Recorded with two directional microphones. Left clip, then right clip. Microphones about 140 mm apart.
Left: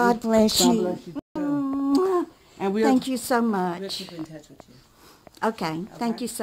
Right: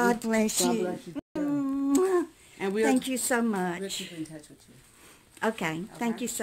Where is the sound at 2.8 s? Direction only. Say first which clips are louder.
Left 4 dB; 20° left (ahead or behind).